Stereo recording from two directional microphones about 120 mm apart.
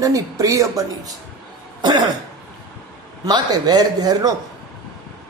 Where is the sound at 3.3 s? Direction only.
35° right (ahead or behind).